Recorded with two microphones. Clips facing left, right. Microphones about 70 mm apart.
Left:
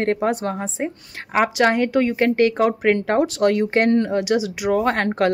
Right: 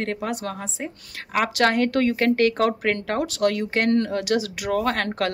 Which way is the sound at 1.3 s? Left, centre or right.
Centre.